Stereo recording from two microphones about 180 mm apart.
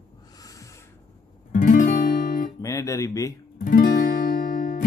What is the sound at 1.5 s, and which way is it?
Guitar, 45° left (ahead or behind).